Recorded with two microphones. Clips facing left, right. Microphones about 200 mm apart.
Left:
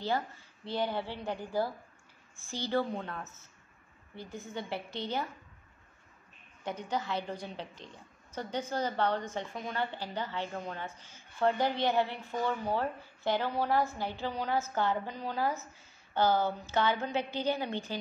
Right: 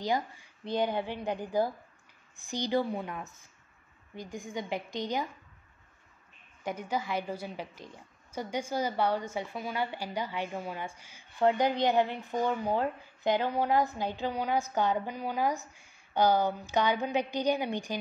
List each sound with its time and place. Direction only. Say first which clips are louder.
0.0 s a woman's voice: right 2 dB; 15° right (ahead or behind)
6.6 s a woman's voice: right 2 dB; 10° right (ahead or behind)